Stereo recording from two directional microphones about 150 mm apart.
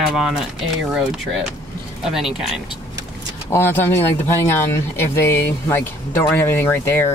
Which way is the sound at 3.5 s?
15° left (ahead or behind).